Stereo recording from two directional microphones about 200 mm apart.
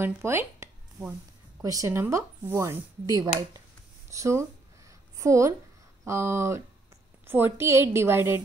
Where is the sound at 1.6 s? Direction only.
15° right (ahead or behind).